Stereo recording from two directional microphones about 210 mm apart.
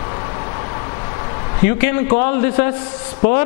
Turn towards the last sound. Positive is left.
turn(degrees=10)  # may be behind; listen again after turning